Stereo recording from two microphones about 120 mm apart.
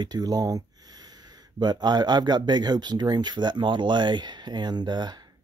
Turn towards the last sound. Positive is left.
turn(degrees=-35)  # may be behind; listen again after turning